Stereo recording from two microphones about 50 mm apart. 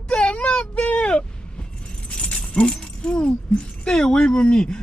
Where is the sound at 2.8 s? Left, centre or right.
Centre.